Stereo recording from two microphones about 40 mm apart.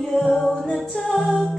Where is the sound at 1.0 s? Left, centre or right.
Centre.